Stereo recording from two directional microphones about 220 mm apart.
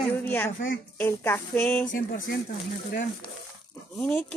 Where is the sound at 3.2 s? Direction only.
20° left (ahead or behind).